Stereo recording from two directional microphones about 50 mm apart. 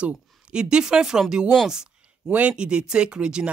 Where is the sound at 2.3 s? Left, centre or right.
Right.